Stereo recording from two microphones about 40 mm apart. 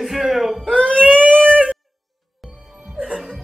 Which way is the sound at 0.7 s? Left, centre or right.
Left.